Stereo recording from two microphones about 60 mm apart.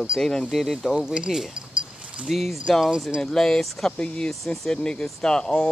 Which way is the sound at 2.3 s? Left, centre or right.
Centre.